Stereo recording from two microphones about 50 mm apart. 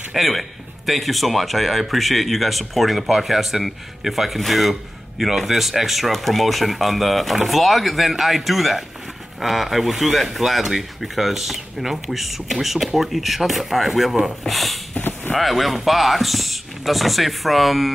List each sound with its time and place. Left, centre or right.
0.1 s speech: centre
15.0 s a sound: left
15.3 s speech: centre